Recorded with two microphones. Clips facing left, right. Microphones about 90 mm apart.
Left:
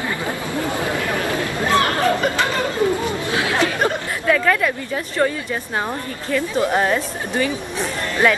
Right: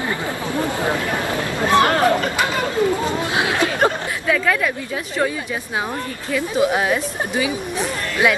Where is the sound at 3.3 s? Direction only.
20° right (ahead or behind).